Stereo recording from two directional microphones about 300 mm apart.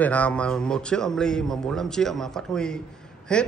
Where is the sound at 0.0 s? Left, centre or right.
Centre.